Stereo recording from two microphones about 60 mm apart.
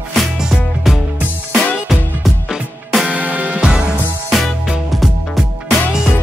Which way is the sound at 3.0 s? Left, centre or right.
Right.